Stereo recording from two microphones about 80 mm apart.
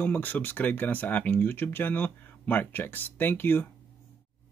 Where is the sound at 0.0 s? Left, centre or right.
Left.